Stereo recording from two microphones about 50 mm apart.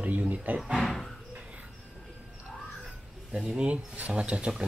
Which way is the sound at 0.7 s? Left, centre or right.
Centre.